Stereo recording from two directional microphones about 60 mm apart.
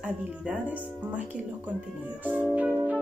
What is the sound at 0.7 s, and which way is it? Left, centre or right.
Speech, right.